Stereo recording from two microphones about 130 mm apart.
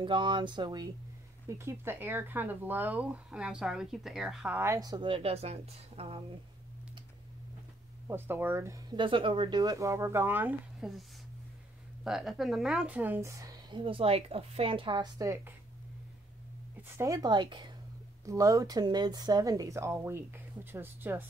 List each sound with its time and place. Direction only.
0.0 s a woman's voice: 40° right (ahead or behind)
1.5 s speech: 20° right (ahead or behind); by 4.5 s centre (ahead or behind)
4.5 s speech: 15° right (ahead or behind)
4.7 s a woman's voice: 30° right (ahead or behind); by 6.2 s 50° right (ahead or behind)
8.1 s speech: 15° right (ahead or behind)
8.9 s a woman's voice: 40° right (ahead or behind)
9.6 s speech: 25° right (ahead or behind)
10.8 s speech: 5° right (ahead or behind)
12.0 s speech: 5° right (ahead or behind)
13.7 s a woman's voice: 40° right (ahead or behind)
16.9 s a woman's voice: 25° right (ahead or behind)
18.2 s speech: 25° right (ahead or behind)